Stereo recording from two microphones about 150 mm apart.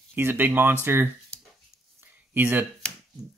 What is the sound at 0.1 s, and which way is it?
Speech, 15° right (ahead or behind).